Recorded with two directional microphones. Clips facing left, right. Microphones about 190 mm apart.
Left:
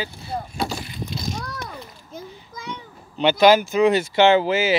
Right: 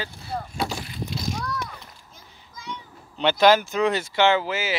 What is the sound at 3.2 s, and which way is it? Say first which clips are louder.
Speech: left 3 dB; 10° left (ahead or behind).